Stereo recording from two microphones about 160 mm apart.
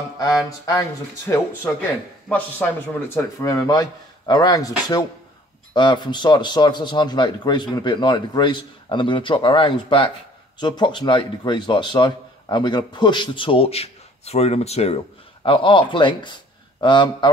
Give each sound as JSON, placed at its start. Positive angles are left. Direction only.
{"t": 0.2, "sound": "a man's voice", "side_deg": 20}
{"t": 3.2, "sound": "a man's voice", "side_deg": 20}